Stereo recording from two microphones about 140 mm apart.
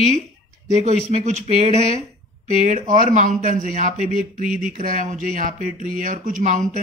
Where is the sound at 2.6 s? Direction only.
65° right (ahead or behind).